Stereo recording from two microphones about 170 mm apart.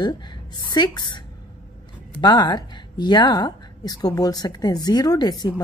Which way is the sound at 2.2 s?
25° left (ahead or behind).